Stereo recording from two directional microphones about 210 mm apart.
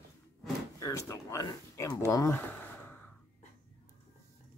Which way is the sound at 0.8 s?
15° left (ahead or behind).